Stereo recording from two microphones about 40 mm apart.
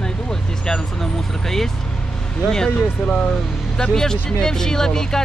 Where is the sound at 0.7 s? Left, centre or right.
Centre.